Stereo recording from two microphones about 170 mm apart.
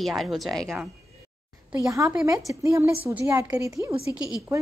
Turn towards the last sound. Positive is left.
turn(degrees=20)  # may be behind; listen again after turning